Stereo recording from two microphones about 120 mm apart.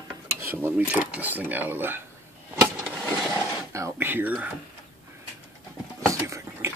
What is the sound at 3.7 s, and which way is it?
Speech, 20° right (ahead or behind).